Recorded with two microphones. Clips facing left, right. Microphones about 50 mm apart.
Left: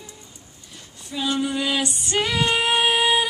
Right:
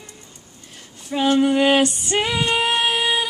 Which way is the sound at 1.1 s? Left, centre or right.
Right.